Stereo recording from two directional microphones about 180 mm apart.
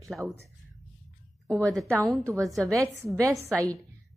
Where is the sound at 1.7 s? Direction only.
Centre (ahead or behind).